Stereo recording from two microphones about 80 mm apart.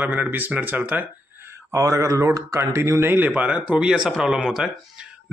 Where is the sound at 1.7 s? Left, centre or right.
Right; by 3.9 s centre.